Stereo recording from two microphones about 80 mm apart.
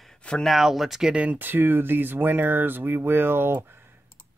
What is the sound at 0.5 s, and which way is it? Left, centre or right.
Speech, centre.